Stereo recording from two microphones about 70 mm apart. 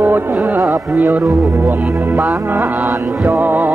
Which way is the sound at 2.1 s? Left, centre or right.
Right.